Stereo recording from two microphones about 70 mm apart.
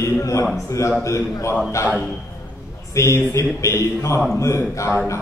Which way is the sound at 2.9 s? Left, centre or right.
Left.